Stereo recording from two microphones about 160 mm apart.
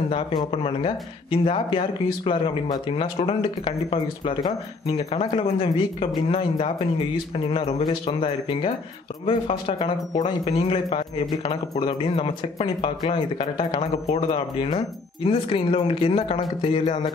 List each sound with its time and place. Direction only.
0.1 s speech: 25° left (ahead or behind)
7.3 s speech: 35° left (ahead or behind)